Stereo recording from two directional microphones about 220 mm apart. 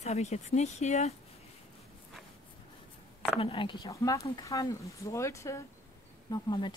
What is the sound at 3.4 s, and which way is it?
A woman's voice, 20° left (ahead or behind).